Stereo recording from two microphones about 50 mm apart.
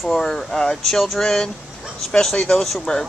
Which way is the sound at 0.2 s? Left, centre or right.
Centre.